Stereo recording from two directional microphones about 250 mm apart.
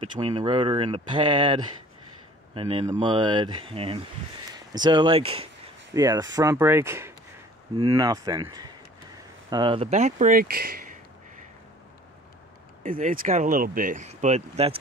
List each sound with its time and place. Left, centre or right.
0.0 s speech: centre; by 11.0 s right
12.8 s speech: right